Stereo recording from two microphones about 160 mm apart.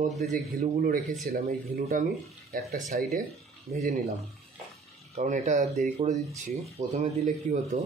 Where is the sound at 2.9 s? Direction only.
55° right (ahead or behind).